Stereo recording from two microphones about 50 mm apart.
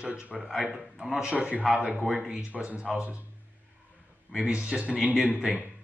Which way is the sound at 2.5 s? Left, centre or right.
Right.